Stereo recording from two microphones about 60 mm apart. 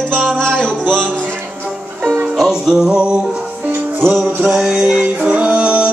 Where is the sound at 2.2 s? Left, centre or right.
Centre.